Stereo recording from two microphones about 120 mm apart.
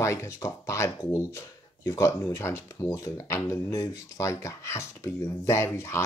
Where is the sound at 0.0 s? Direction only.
25° left (ahead or behind).